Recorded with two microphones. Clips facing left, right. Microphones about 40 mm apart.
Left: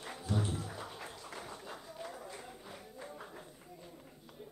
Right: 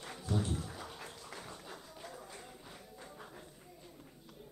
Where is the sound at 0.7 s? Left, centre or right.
Centre.